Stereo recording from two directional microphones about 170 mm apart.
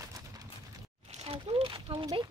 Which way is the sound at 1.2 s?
35° right (ahead or behind).